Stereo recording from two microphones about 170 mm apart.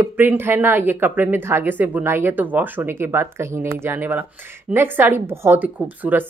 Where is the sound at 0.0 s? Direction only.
10° right (ahead or behind).